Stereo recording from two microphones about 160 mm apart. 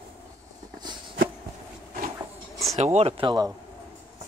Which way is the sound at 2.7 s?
45° right (ahead or behind).